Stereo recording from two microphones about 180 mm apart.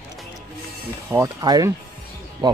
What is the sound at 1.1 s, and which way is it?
Speech, 20° right (ahead or behind).